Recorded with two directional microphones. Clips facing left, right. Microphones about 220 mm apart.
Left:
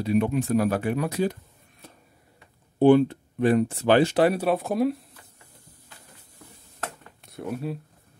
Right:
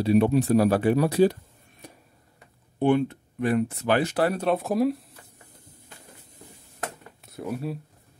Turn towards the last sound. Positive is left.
turn(degrees=0)  # may be behind; listen again after turning